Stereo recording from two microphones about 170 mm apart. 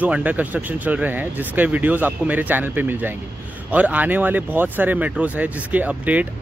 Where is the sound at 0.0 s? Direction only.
10° right (ahead or behind).